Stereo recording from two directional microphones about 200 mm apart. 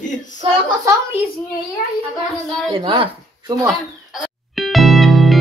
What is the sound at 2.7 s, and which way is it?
Speech, 25° right (ahead or behind).